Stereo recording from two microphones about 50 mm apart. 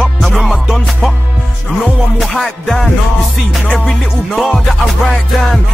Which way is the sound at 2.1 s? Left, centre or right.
Centre.